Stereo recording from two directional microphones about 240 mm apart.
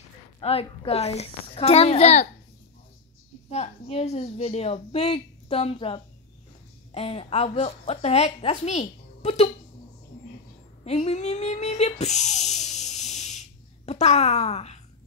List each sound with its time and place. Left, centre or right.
0.4 s a woman's voice: left
3.4 s a woman's voice: left
10.8 s a woman's voice: left